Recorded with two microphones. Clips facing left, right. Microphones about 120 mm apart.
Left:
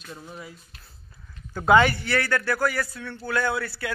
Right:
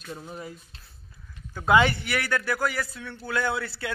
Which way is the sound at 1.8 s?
20° right (ahead or behind).